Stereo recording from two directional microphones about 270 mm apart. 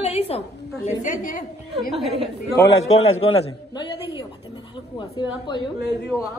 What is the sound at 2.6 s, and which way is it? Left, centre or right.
Speech, left.